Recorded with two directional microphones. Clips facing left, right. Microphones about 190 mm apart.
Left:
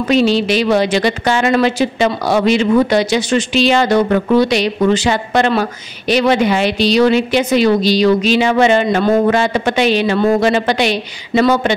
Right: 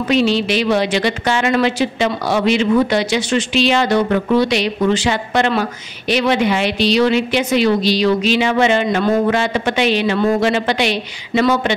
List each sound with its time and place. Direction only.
0.1 s a woman's voice: 40° left (ahead or behind)